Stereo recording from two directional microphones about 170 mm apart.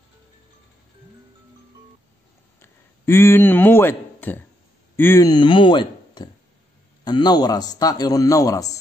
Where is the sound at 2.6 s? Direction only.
15° left (ahead or behind).